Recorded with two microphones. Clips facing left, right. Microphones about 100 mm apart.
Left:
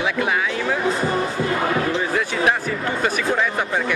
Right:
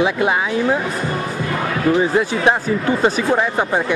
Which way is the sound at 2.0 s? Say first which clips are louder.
Right 5 dB; 25° right (ahead or behind).